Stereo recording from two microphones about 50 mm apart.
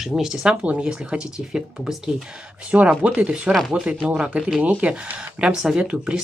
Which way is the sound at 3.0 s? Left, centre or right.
Right.